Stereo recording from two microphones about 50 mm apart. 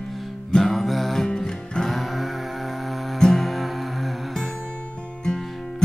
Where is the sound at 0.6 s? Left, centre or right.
Centre.